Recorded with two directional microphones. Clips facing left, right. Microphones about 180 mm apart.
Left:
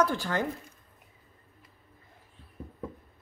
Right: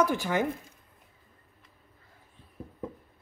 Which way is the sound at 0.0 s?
15° right (ahead or behind).